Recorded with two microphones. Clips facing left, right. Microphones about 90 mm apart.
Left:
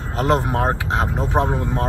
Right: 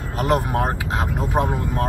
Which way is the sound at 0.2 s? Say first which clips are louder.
Left 1 dB; 30° left (ahead or behind).